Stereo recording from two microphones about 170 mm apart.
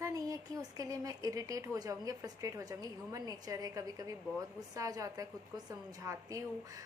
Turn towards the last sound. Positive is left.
turn(degrees=-20)  # may be behind; listen again after turning